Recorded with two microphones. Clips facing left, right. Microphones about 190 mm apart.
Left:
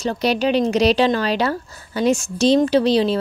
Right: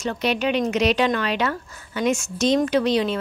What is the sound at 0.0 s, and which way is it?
Speech, 35° left (ahead or behind).